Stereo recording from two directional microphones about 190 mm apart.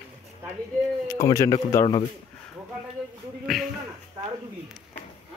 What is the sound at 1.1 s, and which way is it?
Speech, 20° left (ahead or behind).